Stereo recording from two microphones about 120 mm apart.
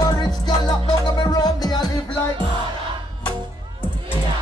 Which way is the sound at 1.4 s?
35° left (ahead or behind).